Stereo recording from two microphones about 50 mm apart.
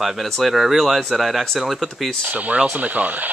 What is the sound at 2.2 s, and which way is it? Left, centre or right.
Speech, right.